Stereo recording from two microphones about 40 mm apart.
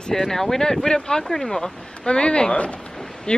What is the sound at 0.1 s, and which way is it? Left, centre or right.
Speech, centre.